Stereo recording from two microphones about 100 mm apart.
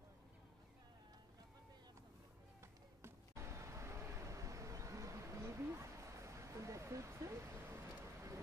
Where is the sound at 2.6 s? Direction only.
30° right (ahead or behind).